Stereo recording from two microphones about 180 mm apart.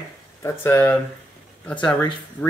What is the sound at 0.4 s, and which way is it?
Mantra, 15° left (ahead or behind).